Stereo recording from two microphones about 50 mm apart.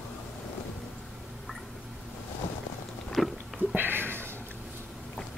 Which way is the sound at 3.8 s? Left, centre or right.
Right.